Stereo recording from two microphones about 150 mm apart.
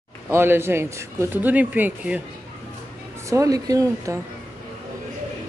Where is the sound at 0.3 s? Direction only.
15° right (ahead or behind).